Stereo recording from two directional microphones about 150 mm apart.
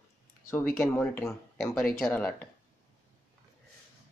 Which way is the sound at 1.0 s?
15° left (ahead or behind).